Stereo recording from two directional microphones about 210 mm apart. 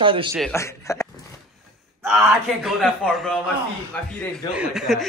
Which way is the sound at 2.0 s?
5° right (ahead or behind).